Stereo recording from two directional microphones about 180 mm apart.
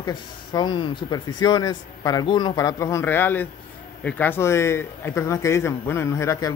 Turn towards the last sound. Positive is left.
turn(degrees=15)  # may be behind; listen again after turning